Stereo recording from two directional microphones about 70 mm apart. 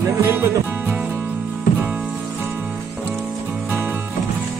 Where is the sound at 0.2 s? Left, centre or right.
Right.